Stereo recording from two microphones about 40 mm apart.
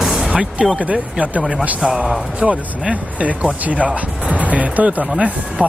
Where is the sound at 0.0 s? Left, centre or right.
Centre.